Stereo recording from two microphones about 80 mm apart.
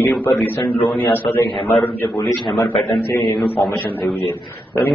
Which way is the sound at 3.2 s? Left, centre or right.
Centre.